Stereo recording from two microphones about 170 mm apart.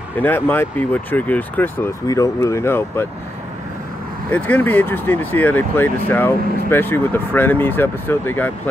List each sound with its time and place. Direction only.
0.2 s speech: 10° left (ahead or behind)
4.3 s speech: 10° left (ahead or behind)